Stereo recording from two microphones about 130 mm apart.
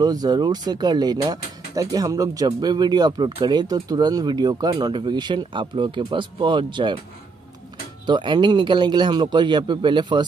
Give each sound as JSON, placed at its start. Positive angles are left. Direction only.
{"t": 0.0, "sound": "speech", "side_deg": -30}
{"t": 8.1, "sound": "speech", "side_deg": -35}